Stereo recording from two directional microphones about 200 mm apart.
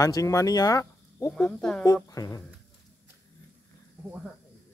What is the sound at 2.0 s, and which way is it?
Speech, 20° left (ahead or behind).